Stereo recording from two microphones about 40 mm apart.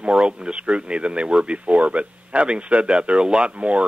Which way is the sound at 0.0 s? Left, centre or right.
Right.